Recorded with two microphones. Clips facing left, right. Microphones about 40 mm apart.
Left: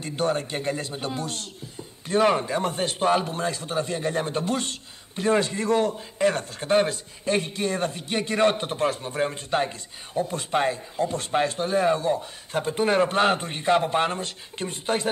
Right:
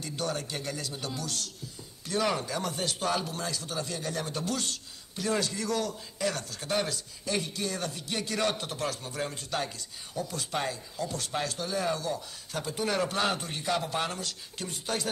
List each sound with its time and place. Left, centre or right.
0.0 s a man's voice: left